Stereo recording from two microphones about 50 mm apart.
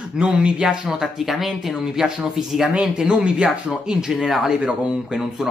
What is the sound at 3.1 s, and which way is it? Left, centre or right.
Speech, centre.